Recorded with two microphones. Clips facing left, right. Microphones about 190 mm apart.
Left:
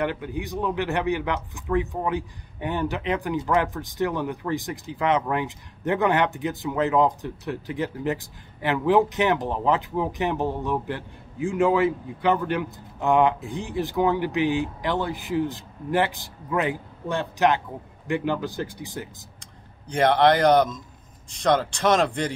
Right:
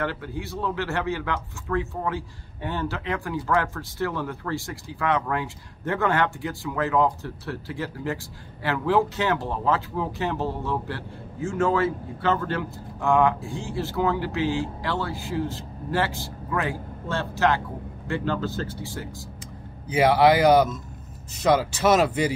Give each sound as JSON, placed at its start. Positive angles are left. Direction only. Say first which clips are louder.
{"t": 0.0, "sound": "speech", "louder": "left 2 dB", "side_deg": 15}
{"t": 19.9, "sound": "speech", "louder": "right 1 dB", "side_deg": -5}